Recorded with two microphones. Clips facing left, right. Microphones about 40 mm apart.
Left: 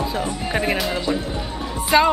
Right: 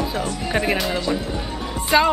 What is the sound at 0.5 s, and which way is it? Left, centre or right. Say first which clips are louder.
Speech: right 1 dB; centre.